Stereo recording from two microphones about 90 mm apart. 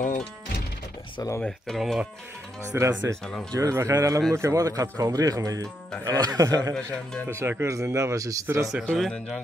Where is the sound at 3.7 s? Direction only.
35° right (ahead or behind).